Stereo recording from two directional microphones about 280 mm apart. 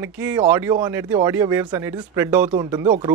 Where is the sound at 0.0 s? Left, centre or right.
Centre.